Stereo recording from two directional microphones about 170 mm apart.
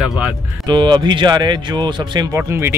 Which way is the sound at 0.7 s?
25° right (ahead or behind).